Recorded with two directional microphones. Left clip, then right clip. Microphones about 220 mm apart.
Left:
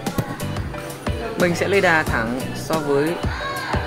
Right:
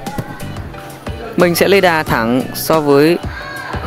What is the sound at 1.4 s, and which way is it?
Speech, 35° right (ahead or behind).